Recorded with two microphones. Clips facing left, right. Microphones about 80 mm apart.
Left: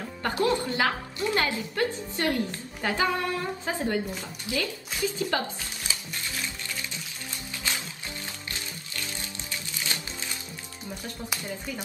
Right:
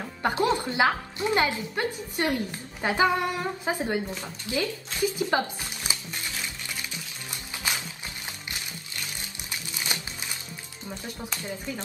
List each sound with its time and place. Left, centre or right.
0.2 s a woman's voice: right
7.7 s music: centre